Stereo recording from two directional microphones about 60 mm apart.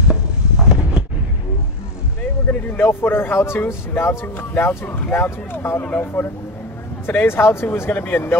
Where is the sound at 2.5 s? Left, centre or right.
Left.